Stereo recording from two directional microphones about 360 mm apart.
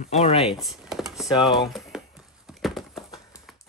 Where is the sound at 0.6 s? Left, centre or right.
Centre.